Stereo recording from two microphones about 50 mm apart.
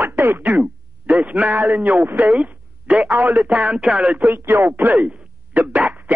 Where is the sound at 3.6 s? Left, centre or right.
Centre.